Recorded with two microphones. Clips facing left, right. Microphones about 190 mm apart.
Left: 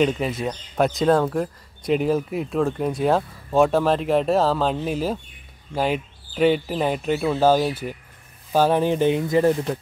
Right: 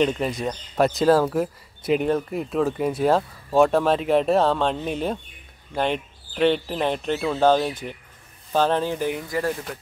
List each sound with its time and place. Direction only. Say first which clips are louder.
0.0 s speech: left 1 dB; 5° left (ahead or behind); by 9.8 s 20° left (ahead or behind)